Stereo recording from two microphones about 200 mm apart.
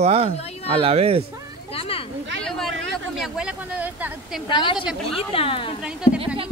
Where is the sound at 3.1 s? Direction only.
5° right (ahead or behind).